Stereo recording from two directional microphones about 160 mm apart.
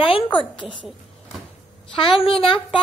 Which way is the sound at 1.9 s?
35° left (ahead or behind).